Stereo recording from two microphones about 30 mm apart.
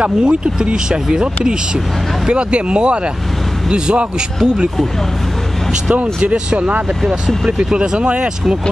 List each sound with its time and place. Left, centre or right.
0.0 s speech: right
0.8 s speech: right
2.2 s speech: right
6.3 s speech: right